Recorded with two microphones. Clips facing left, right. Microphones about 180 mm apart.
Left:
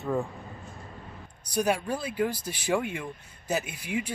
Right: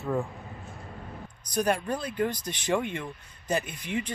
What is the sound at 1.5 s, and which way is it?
Speech, 10° left (ahead or behind).